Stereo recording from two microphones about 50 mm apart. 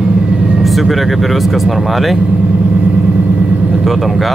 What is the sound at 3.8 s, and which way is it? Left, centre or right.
Speech, centre.